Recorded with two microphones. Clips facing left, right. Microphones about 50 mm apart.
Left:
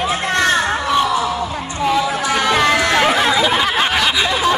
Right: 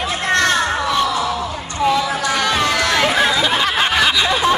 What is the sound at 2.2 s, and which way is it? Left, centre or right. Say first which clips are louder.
Music: left 2 dB; centre.